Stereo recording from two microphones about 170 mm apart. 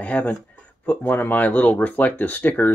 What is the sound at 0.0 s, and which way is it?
Speech, 10° left (ahead or behind).